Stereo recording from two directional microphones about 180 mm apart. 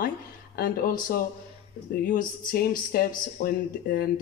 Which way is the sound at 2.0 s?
50° left (ahead or behind).